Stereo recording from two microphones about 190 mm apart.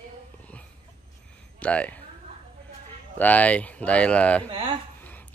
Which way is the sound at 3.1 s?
10° left (ahead or behind).